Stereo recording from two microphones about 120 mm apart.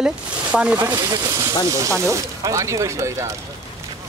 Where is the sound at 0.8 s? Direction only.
25° right (ahead or behind).